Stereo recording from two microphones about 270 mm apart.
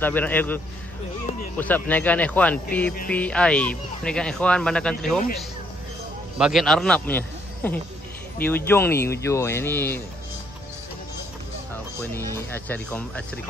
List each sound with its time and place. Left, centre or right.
0.0 s speech: centre
1.6 s speech: centre
6.3 s a man's voice: centre
11.7 s speech: centre